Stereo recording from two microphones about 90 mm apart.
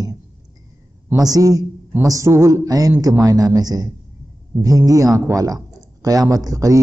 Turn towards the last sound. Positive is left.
turn(degrees=-40)  # may be behind; listen again after turning